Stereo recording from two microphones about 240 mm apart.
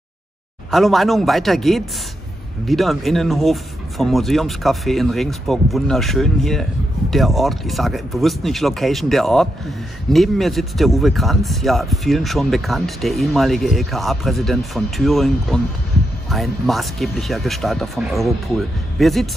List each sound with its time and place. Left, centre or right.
0.7 s speech: centre